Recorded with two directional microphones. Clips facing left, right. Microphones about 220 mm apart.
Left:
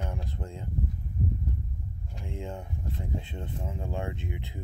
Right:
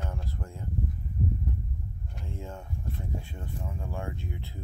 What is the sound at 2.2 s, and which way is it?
Speech, 20° left (ahead or behind).